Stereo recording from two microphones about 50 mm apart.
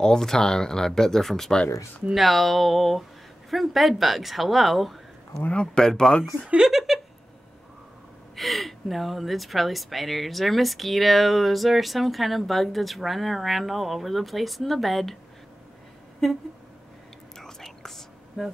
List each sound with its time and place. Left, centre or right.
0.0 s speech: centre
5.4 s speech: left
5.8 s speech: centre
6.5 s speech: centre
8.4 s speech: centre
17.4 s whispering: centre
18.4 s speech: centre